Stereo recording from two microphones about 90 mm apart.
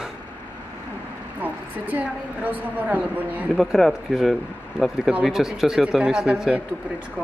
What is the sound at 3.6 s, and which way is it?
Speech, centre (ahead or behind).